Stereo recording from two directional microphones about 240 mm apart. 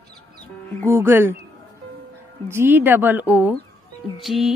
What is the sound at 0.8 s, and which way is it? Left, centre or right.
Music, centre.